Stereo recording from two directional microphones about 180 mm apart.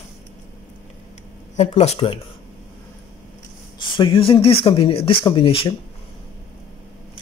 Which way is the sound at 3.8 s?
25° left (ahead or behind).